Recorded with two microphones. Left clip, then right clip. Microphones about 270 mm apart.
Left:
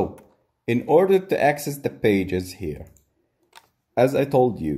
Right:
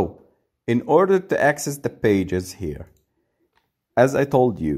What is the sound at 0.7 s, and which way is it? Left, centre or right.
Speech, right.